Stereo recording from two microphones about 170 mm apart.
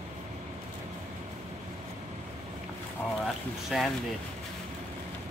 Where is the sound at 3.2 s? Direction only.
Centre (ahead or behind).